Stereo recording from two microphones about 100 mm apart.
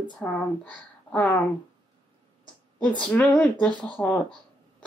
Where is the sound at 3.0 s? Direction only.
15° left (ahead or behind).